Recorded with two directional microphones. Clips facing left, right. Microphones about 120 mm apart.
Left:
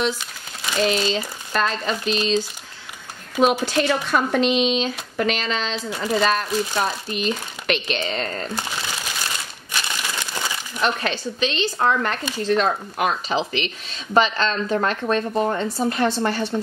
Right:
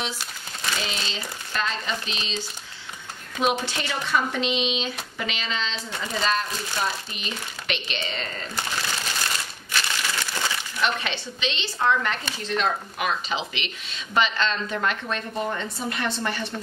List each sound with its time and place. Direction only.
0.8 s speech: 45° left (ahead or behind)
8.8 s a sound: 5° left (ahead or behind)
9.7 s crumpling: 15° left (ahead or behind)
11.0 s a woman's voice: 45° left (ahead or behind)